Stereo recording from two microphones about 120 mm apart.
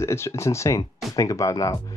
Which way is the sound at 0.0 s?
20° left (ahead or behind).